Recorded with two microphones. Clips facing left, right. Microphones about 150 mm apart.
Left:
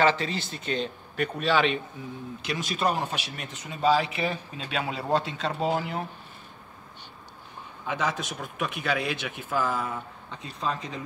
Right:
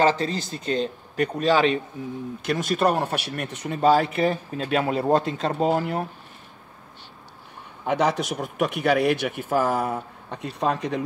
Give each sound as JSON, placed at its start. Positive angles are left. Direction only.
{"t": 0.0, "sound": "a man's voice", "side_deg": -40}
{"t": 2.4, "sound": "speech", "side_deg": -50}
{"t": 7.8, "sound": "a man's voice", "side_deg": -70}